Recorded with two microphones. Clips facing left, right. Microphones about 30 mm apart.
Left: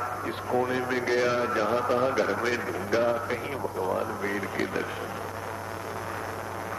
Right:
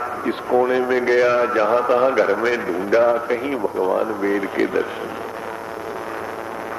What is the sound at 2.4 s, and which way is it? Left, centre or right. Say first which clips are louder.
A man's voice: right 8 dB; right.